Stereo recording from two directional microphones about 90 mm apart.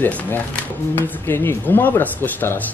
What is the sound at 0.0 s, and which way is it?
Speech, 20° left (ahead or behind).